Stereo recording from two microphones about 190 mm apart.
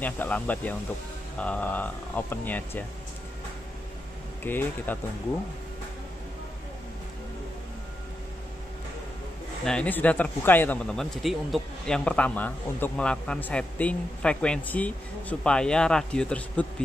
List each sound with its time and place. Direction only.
0.0 s speech: 10° left (ahead or behind)
4.5 s speech: 10° left (ahead or behind)
9.7 s speech: 5° left (ahead or behind)